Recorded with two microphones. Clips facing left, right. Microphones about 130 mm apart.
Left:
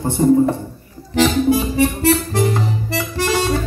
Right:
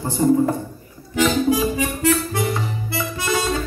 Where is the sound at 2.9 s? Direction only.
90° left.